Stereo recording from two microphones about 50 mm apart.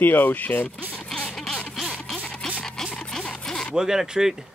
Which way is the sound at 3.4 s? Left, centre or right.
Centre.